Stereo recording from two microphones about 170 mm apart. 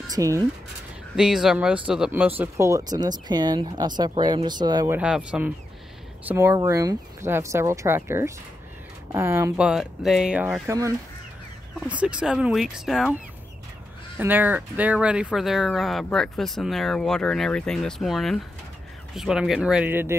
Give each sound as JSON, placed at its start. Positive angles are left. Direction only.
{"t": 0.1, "sound": "speech", "side_deg": -20}
{"t": 1.1, "sound": "speech", "side_deg": -5}
{"t": 4.9, "sound": "speech", "side_deg": -5}
{"t": 6.2, "sound": "speech", "side_deg": -15}
{"t": 11.9, "sound": "speech", "side_deg": -5}